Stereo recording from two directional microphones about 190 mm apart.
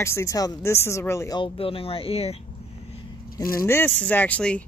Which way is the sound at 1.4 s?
30° left (ahead or behind).